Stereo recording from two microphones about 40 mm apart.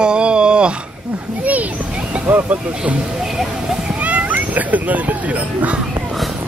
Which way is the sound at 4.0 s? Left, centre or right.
Right.